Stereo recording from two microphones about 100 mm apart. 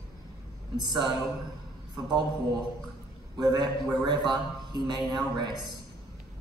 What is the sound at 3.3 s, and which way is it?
A man's voice, 45° right (ahead or behind).